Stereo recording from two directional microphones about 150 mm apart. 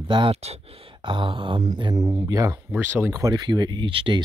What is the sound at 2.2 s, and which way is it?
Speech, 25° right (ahead or behind).